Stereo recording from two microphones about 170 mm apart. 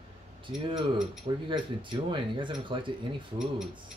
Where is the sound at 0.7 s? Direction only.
30° right (ahead or behind).